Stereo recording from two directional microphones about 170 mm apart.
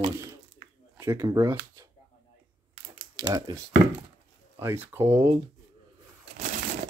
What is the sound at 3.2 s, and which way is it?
Speech, 15° right (ahead or behind).